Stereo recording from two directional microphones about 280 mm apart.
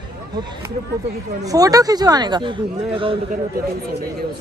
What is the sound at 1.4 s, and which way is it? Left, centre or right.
Speech, centre.